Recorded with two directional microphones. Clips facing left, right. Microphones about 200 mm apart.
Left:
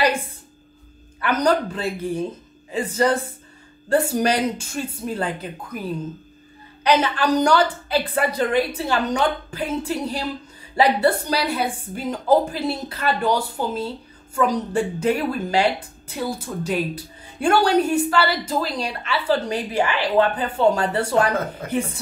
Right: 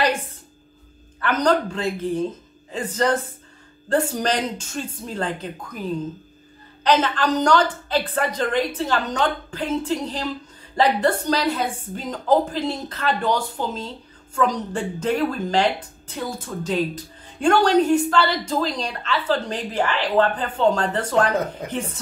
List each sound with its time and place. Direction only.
1.2 s a woman's voice: 10° left (ahead or behind)
21.6 s a woman's voice: 15° right (ahead or behind)